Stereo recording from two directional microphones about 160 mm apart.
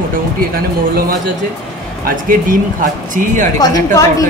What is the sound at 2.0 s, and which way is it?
Speech, 55° right (ahead or behind).